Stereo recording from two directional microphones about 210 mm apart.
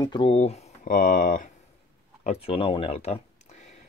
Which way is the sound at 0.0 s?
25° left (ahead or behind).